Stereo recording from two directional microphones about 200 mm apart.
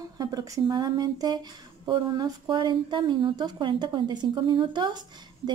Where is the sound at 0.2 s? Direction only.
20° right (ahead or behind).